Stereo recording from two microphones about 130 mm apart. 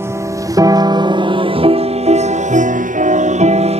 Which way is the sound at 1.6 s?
65° right (ahead or behind).